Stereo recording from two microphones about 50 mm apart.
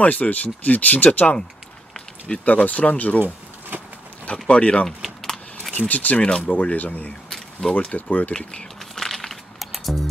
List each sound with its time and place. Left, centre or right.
0.0 s speech: left
2.0 s a sound: centre
2.4 s speech: left
3.7 s horse: right
4.3 s speech: left
4.8 s keys jangling: centre
5.7 s speech: left
7.2 s a sound: centre
7.7 s speech: left
8.3 s speech: centre
8.9 s music: centre